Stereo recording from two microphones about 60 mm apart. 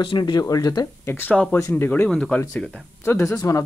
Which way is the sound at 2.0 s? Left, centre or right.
Centre.